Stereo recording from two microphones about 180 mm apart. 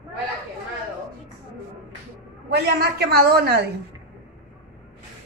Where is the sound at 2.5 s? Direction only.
60° right (ahead or behind).